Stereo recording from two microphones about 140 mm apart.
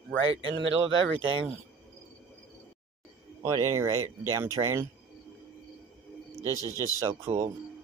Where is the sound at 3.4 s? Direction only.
20° right (ahead or behind).